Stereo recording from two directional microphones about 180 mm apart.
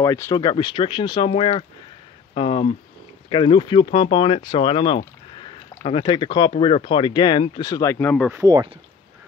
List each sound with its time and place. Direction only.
0.0 s speech: 15° left (ahead or behind)
8.2 s speech: 10° right (ahead or behind)
8.5 s speech: 20° right (ahead or behind)